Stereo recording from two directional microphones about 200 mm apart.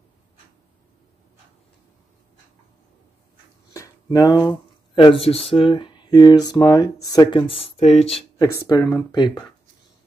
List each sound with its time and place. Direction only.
3.7 s a sound: 20° left (ahead or behind)
5.2 s speech: 30° left (ahead or behind)
8.5 s speech: 15° left (ahead or behind)